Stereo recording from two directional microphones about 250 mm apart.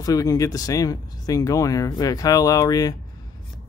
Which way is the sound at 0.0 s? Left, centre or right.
Centre.